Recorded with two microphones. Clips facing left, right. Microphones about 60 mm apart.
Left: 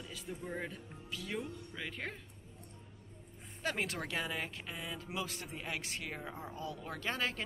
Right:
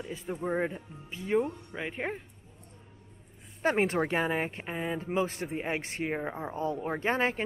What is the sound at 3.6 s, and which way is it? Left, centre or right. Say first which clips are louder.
Speech: right 11 dB; right.